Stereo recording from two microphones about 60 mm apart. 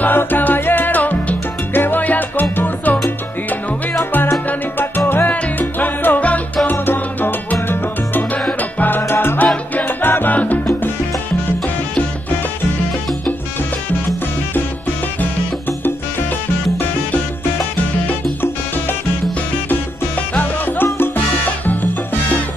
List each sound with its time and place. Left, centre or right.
0.0 s music: left
1.7 s salsa music: left
4.1 s salsa music: left
7.6 s music: left
8.7 s salsa music: left
20.3 s music: left